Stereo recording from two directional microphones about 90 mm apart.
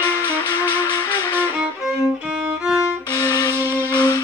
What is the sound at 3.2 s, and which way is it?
Wind instrument, 50° left (ahead or behind).